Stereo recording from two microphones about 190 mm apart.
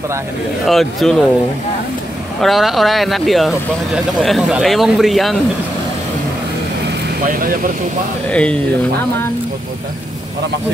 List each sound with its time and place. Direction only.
0.7 s speech: centre (ahead or behind)
2.4 s speech: centre (ahead or behind)
7.2 s speech: 45° right (ahead or behind)
8.3 s speech: 5° left (ahead or behind)